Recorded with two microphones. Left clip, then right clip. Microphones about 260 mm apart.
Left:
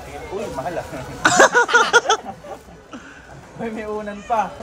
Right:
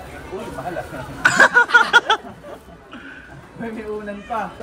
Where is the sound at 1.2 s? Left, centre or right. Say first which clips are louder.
Even; centre.